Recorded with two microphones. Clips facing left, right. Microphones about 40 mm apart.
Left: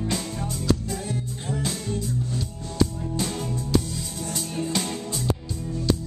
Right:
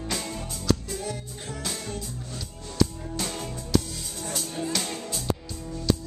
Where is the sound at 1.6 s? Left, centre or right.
Centre.